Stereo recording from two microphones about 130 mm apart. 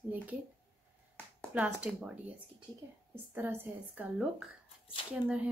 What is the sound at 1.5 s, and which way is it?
Speech, 10° right (ahead or behind).